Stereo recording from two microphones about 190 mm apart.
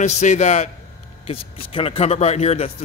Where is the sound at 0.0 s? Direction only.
40° left (ahead or behind).